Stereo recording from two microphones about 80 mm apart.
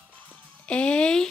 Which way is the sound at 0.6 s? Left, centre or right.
Centre.